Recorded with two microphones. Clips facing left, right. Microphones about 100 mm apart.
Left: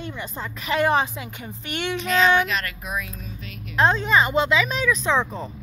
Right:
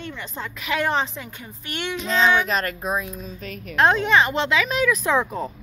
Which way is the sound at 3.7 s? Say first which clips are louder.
Right 1 dB; centre (ahead or behind).